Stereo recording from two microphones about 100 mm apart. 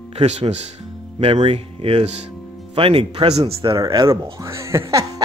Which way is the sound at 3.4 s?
55° right (ahead or behind).